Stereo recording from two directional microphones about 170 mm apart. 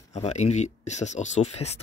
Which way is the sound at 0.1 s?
40° left (ahead or behind).